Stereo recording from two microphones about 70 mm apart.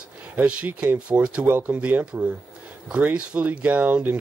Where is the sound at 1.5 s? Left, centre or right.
Right.